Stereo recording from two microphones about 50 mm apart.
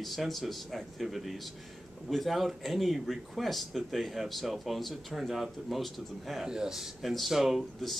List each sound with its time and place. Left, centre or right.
0.0 s speech: centre
6.4 s speech: centre